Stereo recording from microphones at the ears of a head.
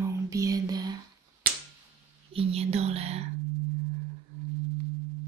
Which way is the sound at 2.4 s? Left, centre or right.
Right.